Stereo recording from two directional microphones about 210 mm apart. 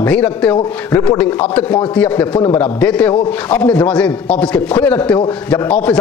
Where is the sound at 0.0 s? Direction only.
5° left (ahead or behind).